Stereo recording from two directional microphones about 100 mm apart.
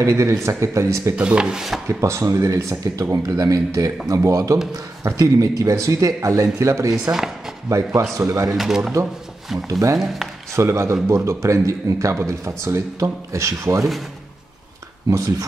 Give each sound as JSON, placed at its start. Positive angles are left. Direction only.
{"t": 0.0, "sound": "speech", "side_deg": -30}
{"t": 1.1, "sound": "speech", "side_deg": -10}
{"t": 1.9, "sound": "speech", "side_deg": -30}
{"t": 6.9, "sound": "speech", "side_deg": -5}
{"t": 8.2, "sound": "speech", "side_deg": -30}
{"t": 8.5, "sound": "speech", "side_deg": -5}
{"t": 9.7, "sound": "speech", "side_deg": -35}
{"t": 15.0, "sound": "speech", "side_deg": -35}